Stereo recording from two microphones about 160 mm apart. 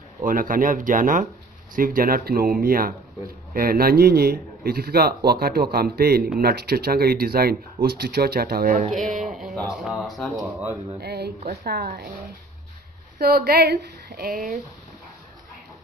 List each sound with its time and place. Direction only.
0.2 s speech: 60° right (ahead or behind)
9.3 s music: centre (ahead or behind)
9.8 s speech: centre (ahead or behind)
10.3 s speech: 15° right (ahead or behind)
11.0 s speech: 90° right
13.2 s speech: 75° right (ahead or behind)